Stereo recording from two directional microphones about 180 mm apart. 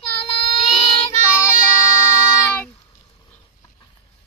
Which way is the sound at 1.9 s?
15° left (ahead or behind).